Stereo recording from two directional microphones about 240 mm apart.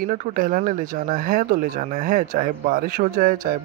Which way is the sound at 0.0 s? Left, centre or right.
Right.